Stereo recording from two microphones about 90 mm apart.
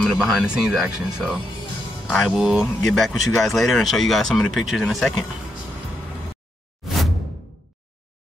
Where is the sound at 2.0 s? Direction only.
Centre (ahead or behind).